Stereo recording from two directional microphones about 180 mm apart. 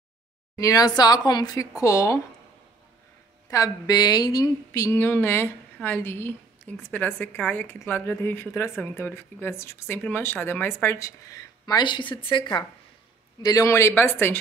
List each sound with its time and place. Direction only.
0.6 s speech: 20° left (ahead or behind)
3.4 s speech: 20° left (ahead or behind)